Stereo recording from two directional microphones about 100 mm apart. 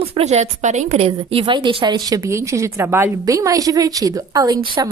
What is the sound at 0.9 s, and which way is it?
Speech, 70° right (ahead or behind).